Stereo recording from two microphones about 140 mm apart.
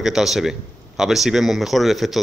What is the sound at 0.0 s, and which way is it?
Speech, 5° right (ahead or behind).